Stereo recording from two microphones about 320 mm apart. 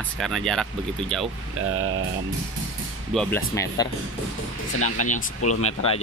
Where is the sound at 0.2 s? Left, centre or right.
Centre.